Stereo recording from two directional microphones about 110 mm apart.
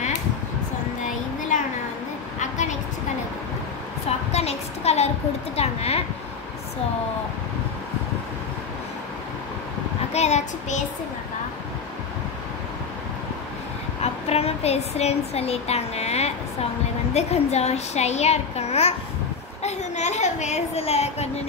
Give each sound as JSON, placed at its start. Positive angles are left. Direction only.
{"t": 4.3, "sound": "a woman's voice", "side_deg": 75}
{"t": 10.1, "sound": "child singing", "side_deg": 90}
{"t": 14.0, "sound": "a woman's voice", "side_deg": 70}
{"t": 19.6, "sound": "a woman's voice", "side_deg": 90}